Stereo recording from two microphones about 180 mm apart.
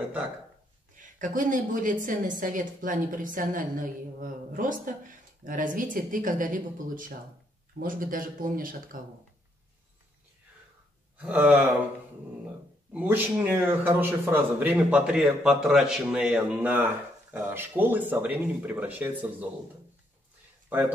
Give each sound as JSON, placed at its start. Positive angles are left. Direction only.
{"t": 0.9, "sound": "a woman's voice", "side_deg": -45}
{"t": 11.1, "sound": "a man's voice", "side_deg": -10}
{"t": 12.9, "sound": "a man's voice", "side_deg": -10}